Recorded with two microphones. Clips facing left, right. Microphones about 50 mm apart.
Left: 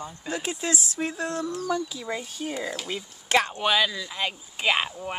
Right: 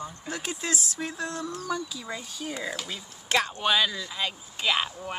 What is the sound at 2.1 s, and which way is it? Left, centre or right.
Speech, left.